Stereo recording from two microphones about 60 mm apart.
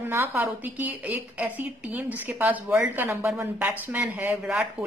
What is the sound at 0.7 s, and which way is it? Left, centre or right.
Speech, right.